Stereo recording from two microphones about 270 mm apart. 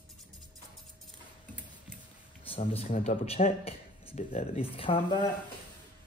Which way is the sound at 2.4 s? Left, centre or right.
Left.